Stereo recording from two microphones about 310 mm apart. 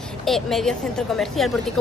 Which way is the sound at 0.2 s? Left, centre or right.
Centre.